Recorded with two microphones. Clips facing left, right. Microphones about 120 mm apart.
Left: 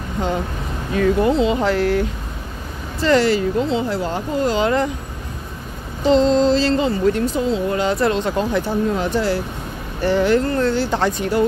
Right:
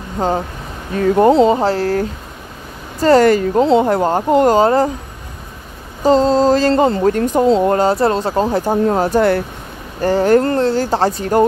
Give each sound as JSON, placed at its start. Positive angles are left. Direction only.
{"t": 0.2, "sound": "speech", "side_deg": -40}
{"t": 4.6, "sound": "speech", "side_deg": -40}
{"t": 6.0, "sound": "speech", "side_deg": -40}